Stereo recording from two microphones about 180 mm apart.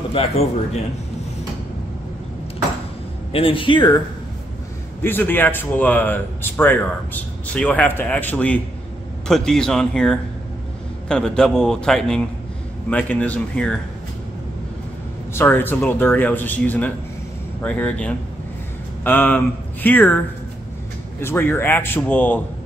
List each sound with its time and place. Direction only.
0.2 s speech: 30° left (ahead or behind)
3.3 s speech: 30° left (ahead or behind)
5.0 s a man's voice: 10° left (ahead or behind)
15.3 s a man's voice: 10° left (ahead or behind)
21.2 s a man's voice: 15° left (ahead or behind)